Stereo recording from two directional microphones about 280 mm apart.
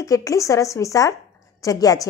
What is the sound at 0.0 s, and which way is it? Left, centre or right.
A woman's voice, centre.